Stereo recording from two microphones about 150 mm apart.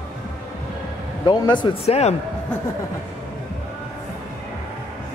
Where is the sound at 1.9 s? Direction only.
45° left (ahead or behind).